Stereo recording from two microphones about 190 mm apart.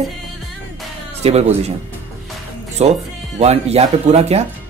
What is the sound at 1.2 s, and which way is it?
Speech, 35° right (ahead or behind).